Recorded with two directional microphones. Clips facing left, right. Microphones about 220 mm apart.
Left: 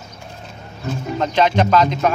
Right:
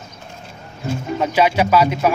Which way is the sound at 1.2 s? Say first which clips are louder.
Even; 10° right (ahead or behind).